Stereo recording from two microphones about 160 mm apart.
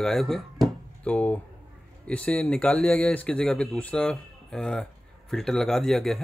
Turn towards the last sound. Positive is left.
turn(degrees=0)  # may be behind; listen again after turning